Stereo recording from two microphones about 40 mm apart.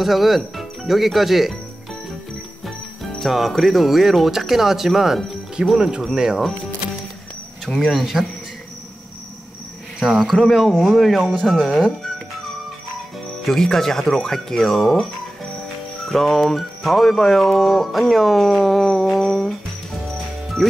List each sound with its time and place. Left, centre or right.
0.0 s speech: centre
2.6 s speech: centre
5.8 s speech: right
7.8 s speech: centre
10.0 s speech: centre
13.5 s speech: centre
16.1 s speech: centre
19.0 s humming: centre
20.1 s music: centre